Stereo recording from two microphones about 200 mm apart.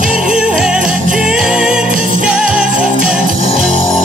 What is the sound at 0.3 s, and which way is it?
Music, 5° right (ahead or behind).